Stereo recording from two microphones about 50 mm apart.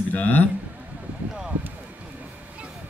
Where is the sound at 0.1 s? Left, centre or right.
Left.